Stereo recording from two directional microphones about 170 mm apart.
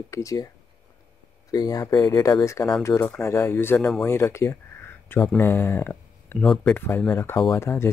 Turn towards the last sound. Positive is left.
turn(degrees=15)  # may be behind; listen again after turning